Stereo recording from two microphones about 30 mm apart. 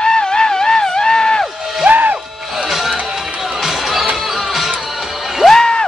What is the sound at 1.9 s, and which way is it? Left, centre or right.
Music, right.